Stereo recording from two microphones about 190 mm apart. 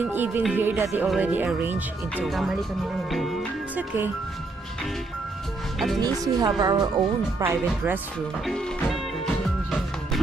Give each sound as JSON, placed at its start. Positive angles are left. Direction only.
{"t": 0.0, "sound": "speech", "side_deg": -10}
{"t": 2.1, "sound": "music", "side_deg": 0}
{"t": 5.9, "sound": "speech", "side_deg": -20}
{"t": 8.5, "sound": "music", "side_deg": 0}